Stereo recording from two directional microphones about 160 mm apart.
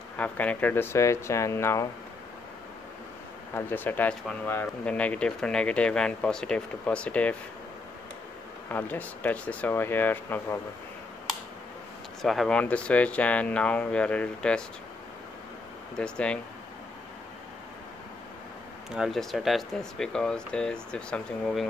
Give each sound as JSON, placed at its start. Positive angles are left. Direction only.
{"t": 0.2, "sound": "speech", "side_deg": 10}
{"t": 3.5, "sound": "speech", "side_deg": 10}
{"t": 8.6, "sound": "speech", "side_deg": 10}
{"t": 12.2, "sound": "speech", "side_deg": 0}
{"t": 16.0, "sound": "speech", "side_deg": 5}
{"t": 18.9, "sound": "speech", "side_deg": 0}